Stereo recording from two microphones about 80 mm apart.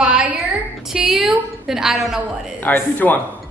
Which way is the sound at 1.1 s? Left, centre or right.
Centre.